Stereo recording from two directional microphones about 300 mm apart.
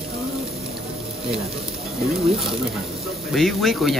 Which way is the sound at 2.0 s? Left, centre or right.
Centre.